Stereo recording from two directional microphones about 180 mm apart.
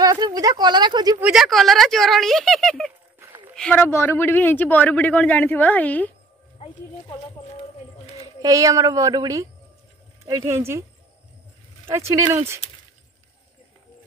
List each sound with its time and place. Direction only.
0.0 s speech: 20° right (ahead or behind)
1.2 s speech: centre (ahead or behind)
3.2 s clip-clop: 10° right (ahead or behind)
3.5 s speech: 5° left (ahead or behind)
6.6 s a sound: 35° left (ahead or behind)
8.4 s speech: 20° right (ahead or behind)
11.9 s speech: 15° right (ahead or behind)